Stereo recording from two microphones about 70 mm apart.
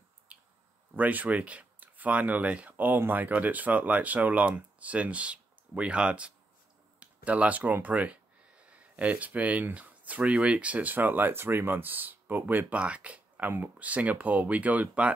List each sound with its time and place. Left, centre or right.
0.9 s speech: right
2.7 s speech: right